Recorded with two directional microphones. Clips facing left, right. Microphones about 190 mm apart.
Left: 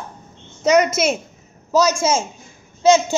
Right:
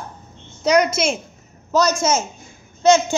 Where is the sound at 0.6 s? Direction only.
5° left (ahead or behind).